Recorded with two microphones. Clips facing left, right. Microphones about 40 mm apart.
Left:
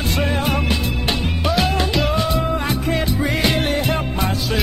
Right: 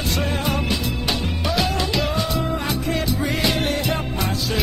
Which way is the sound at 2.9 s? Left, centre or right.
Centre.